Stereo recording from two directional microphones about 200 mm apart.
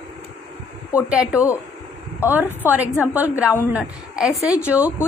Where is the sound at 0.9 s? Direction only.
5° right (ahead or behind).